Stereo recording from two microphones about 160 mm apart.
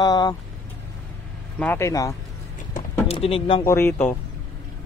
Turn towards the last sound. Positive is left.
turn(degrees=15)  # may be behind; listen again after turning